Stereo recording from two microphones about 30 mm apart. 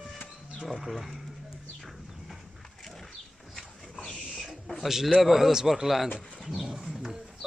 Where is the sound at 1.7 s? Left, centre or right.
Centre.